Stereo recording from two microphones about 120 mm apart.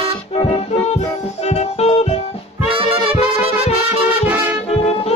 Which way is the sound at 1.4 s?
65° left (ahead or behind).